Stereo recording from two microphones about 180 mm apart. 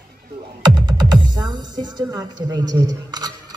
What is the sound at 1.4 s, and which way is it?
A woman's voice, 25° right (ahead or behind).